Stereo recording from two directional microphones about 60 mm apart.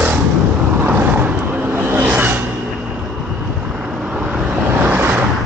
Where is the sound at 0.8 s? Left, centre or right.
Right.